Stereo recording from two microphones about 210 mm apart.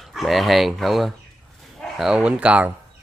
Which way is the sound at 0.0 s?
Centre (ahead or behind).